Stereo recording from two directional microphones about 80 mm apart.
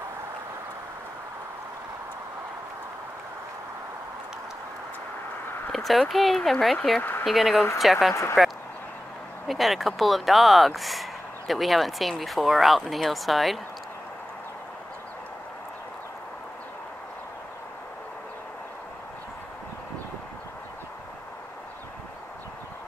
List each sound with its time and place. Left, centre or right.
5.7 s speech: centre
7.0 s speech: left
7.2 s speech: centre
8.1 s speech: left
9.5 s speech: centre